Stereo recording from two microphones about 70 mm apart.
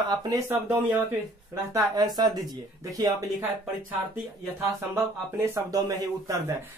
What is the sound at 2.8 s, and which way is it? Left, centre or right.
Speech, right.